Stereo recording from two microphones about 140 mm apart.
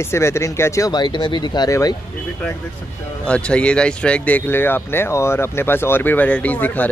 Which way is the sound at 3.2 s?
5° left (ahead or behind).